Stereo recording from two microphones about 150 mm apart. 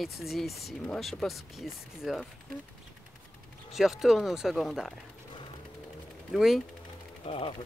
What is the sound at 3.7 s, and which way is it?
Speech, centre (ahead or behind).